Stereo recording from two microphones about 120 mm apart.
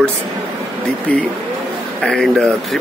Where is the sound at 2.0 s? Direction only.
5° left (ahead or behind).